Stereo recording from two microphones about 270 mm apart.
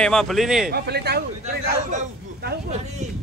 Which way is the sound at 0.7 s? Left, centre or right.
Right.